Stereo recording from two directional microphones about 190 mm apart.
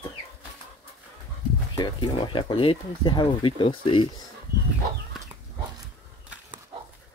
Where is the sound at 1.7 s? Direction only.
25° left (ahead or behind).